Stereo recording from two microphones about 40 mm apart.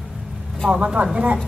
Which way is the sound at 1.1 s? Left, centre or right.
Right.